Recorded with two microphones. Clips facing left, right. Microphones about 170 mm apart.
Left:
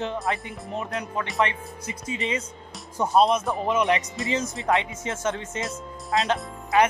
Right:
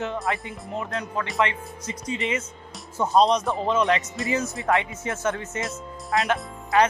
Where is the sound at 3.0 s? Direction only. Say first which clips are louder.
Right 1 dB; 5° left (ahead or behind).